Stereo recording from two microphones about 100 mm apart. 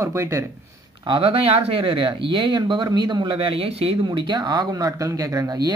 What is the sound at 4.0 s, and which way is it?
Speech, 50° right (ahead or behind).